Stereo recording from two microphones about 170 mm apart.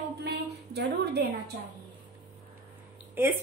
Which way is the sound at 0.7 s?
75° right (ahead or behind).